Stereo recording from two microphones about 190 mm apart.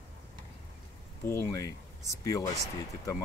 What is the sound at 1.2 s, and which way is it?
Speech, 15° left (ahead or behind).